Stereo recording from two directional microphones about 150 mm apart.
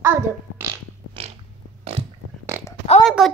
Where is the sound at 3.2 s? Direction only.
5° right (ahead or behind).